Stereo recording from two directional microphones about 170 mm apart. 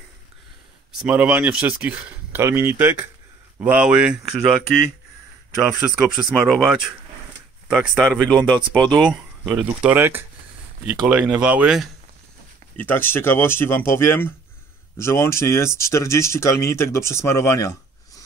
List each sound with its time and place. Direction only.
0.9 s speech: 10° right (ahead or behind)
12.7 s speech: 10° left (ahead or behind)